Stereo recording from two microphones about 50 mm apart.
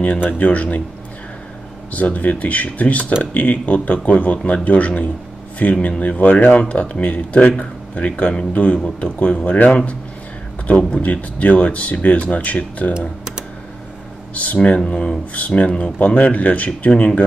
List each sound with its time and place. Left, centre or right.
0.2 s speech: left
1.9 s speech: left
9.7 s speech: left
14.3 s speech: left